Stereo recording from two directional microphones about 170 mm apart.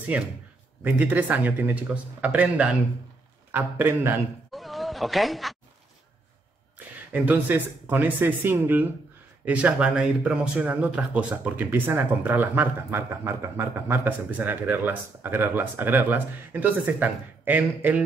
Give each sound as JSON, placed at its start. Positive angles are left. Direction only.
{"t": 0.8, "sound": "speech", "side_deg": -10}
{"t": 4.5, "sound": "a sound", "side_deg": 0}
{"t": 7.1, "sound": "speech", "side_deg": -10}